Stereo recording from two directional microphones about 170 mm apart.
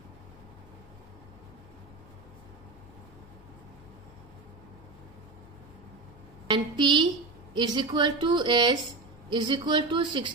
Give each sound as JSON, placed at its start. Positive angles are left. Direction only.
{"t": 6.4, "sound": "a woman's voice", "side_deg": -25}